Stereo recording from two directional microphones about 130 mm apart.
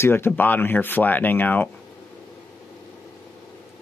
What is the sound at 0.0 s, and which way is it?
Speech, 20° left (ahead or behind).